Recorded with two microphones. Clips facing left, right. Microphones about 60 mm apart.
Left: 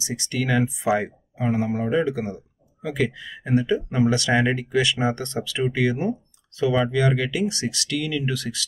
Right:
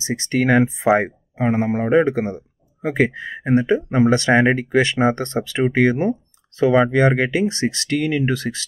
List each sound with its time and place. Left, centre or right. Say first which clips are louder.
0.0 s speech: right 7 dB; right